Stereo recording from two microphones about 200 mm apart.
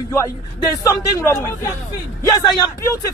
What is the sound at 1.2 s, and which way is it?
Speech, 15° left (ahead or behind).